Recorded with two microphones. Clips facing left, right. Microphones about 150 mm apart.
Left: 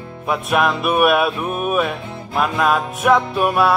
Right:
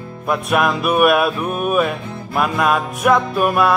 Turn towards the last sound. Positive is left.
turn(degrees=0)  # may be behind; listen again after turning